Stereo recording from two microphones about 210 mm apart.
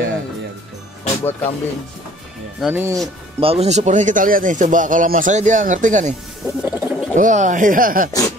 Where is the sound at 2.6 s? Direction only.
10° right (ahead or behind).